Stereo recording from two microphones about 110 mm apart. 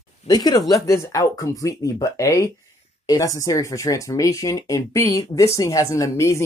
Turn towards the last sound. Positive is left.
turn(degrees=25)  # may be behind; listen again after turning